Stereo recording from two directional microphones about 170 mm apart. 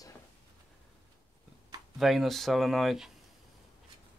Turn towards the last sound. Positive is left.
turn(degrees=0)  # may be behind; listen again after turning